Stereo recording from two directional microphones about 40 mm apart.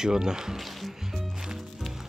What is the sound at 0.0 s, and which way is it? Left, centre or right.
Speech, centre.